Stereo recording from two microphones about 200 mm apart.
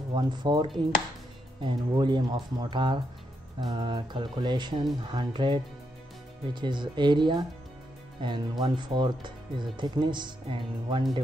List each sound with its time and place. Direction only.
0.1 s speech: 20° right (ahead or behind)